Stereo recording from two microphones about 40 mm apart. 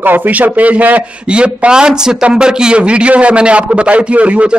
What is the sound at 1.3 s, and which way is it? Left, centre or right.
A man's voice, right.